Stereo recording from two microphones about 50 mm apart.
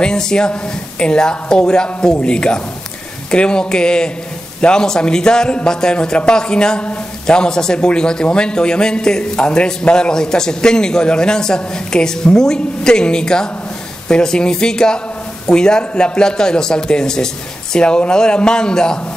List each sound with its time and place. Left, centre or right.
0.0 s a man's voice: centre